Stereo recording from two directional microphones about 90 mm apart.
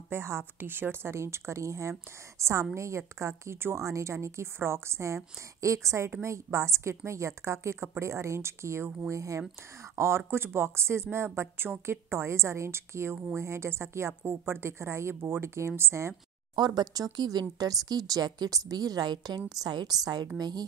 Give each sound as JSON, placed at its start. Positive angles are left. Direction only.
{"t": 0.1, "sound": "speech", "side_deg": -30}
{"t": 16.5, "sound": "speech", "side_deg": -50}